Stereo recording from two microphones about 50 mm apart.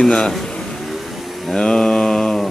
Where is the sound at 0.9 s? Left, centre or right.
Centre.